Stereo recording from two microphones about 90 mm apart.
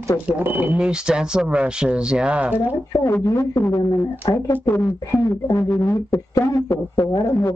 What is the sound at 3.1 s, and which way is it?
Speech, 35° left (ahead or behind).